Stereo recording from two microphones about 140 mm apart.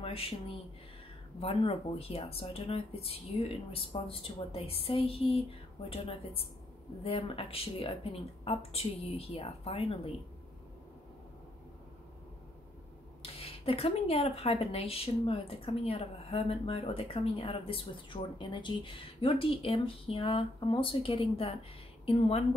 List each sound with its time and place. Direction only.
0.0 s speech: 40° left (ahead or behind)
13.2 s speech: 45° left (ahead or behind)